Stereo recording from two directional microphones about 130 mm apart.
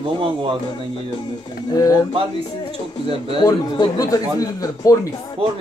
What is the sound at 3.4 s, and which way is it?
Speech, 30° left (ahead or behind).